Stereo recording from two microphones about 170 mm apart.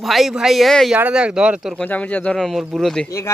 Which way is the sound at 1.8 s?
10° left (ahead or behind).